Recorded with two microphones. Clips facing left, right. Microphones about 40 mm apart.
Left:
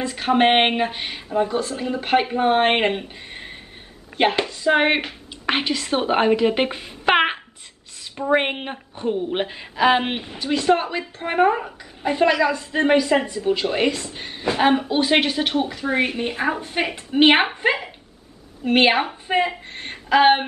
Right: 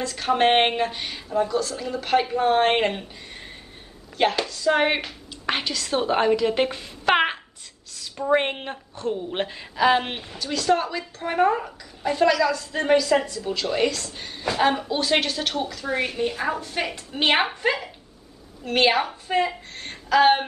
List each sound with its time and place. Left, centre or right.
0.0 s a woman's voice: left